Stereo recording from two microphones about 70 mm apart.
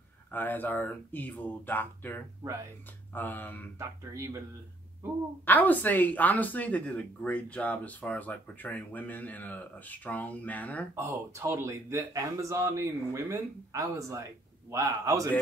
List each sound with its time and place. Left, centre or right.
0.3 s speech: left
4.0 s speech: right
5.4 s speech: left
11.0 s speech: right